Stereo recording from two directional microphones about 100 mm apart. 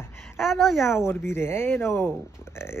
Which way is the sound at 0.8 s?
25° left (ahead or behind).